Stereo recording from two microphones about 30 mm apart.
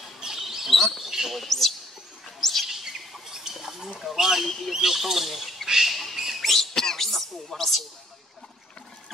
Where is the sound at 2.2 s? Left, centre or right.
Centre.